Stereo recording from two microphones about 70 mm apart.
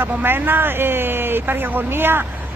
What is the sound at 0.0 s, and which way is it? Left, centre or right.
A woman's voice, right.